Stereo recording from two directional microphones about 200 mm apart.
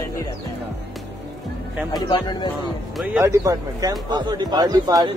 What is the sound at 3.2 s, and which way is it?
A man's voice, 15° right (ahead or behind).